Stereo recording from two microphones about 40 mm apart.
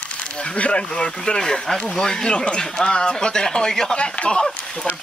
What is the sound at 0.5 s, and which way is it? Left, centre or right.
Speech, left.